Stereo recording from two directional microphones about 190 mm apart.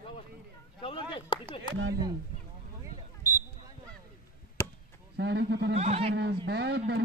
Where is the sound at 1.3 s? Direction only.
25° left (ahead or behind).